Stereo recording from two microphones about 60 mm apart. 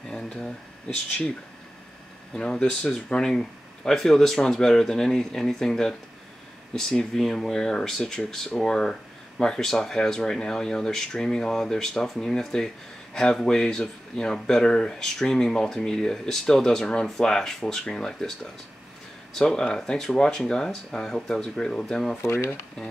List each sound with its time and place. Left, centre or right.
0.1 s speech: centre
2.3 s speech: centre
22.3 s speech: left